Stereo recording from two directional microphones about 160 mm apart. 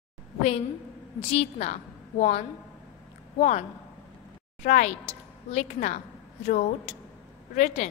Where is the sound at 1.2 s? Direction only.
40° left (ahead or behind).